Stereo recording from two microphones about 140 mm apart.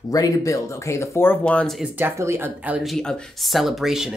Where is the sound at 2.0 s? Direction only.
15° right (ahead or behind).